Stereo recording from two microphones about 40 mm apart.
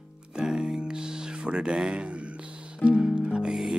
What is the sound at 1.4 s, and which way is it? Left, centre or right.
Music, right.